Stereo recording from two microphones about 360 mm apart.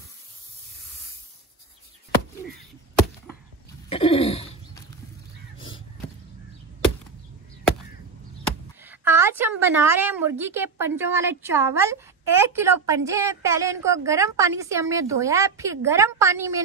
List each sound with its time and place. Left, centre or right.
3.9 s throat clearing: centre
8.8 s a woman's voice: centre